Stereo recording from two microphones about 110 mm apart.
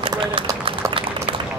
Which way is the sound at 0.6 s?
55° right (ahead or behind).